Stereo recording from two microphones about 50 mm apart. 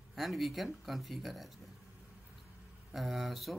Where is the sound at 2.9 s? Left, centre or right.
Centre.